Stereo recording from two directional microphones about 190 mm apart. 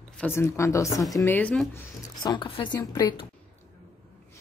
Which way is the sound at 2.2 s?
25° left (ahead or behind).